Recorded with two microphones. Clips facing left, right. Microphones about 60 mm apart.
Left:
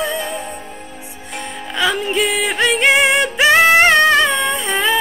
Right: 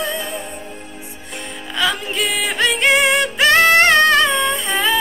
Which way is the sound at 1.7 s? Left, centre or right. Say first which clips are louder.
Left 3 dB; centre.